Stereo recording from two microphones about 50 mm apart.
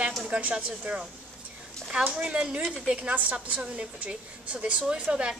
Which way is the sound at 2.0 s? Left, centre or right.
Right.